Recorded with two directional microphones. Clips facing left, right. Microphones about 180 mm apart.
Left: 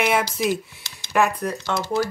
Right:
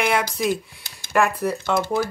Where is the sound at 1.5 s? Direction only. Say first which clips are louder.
Right 1 dB; 55° right (ahead or behind).